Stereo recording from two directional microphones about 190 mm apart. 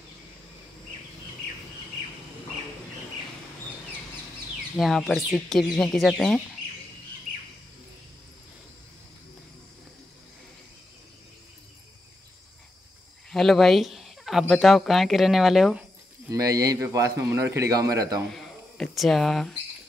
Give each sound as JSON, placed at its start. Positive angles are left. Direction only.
{"t": 4.7, "sound": "speech", "side_deg": 0}
{"t": 13.3, "sound": "a sound", "side_deg": 0}
{"t": 14.5, "sound": "speech", "side_deg": 0}
{"t": 16.3, "sound": "a man's voice", "side_deg": -20}
{"t": 18.3, "sound": "speech", "side_deg": 0}